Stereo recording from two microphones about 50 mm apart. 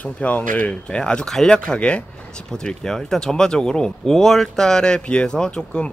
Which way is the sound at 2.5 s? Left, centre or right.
Centre.